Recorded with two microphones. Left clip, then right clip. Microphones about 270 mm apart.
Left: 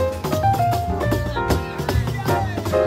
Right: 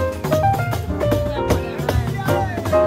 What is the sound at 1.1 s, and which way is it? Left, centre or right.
Music, centre.